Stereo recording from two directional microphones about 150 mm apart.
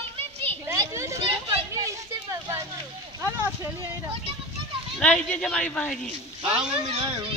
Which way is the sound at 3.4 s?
20° right (ahead or behind).